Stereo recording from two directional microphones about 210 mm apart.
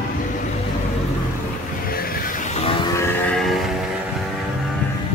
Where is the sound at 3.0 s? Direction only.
10° left (ahead or behind).